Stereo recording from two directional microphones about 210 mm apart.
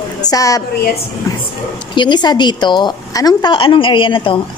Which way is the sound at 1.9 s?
20° left (ahead or behind).